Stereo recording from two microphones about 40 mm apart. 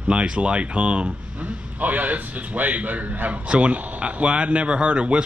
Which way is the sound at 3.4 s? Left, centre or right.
Right.